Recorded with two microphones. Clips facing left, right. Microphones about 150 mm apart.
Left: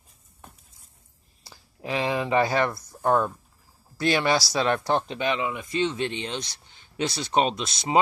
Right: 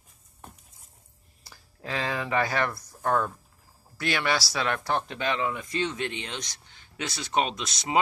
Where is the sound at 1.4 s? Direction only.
20° left (ahead or behind).